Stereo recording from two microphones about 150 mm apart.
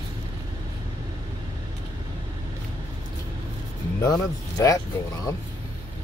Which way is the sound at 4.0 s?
25° left (ahead or behind).